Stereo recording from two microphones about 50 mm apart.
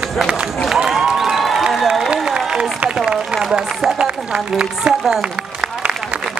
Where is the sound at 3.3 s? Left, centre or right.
Centre.